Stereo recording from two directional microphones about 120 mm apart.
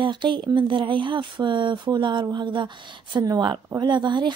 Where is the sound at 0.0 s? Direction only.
40° right (ahead or behind).